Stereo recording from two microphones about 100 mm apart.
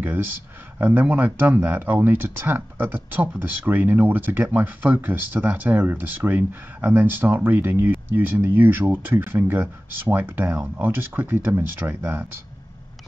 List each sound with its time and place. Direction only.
0.0 s speech: 20° right (ahead or behind)